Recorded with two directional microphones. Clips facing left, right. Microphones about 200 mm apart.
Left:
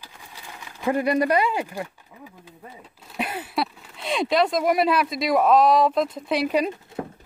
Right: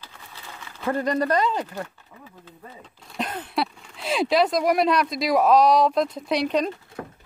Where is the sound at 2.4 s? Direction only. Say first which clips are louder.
Even; 10° left (ahead or behind).